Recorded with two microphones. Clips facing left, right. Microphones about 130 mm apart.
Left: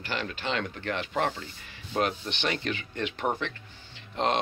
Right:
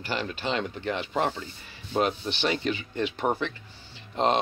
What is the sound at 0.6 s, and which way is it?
Speech, 15° right (ahead or behind).